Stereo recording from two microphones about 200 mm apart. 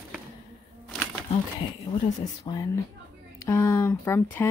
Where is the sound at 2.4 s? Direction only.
20° left (ahead or behind).